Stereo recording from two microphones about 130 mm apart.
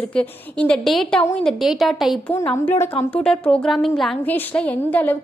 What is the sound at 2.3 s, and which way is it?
Speech, 15° left (ahead or behind).